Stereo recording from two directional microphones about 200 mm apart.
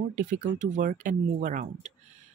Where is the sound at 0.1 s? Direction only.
40° right (ahead or behind).